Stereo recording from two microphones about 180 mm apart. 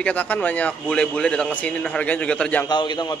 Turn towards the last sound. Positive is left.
turn(degrees=25)  # may be behind; listen again after turning